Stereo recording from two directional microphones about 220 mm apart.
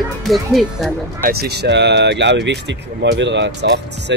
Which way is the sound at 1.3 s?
45° right (ahead or behind).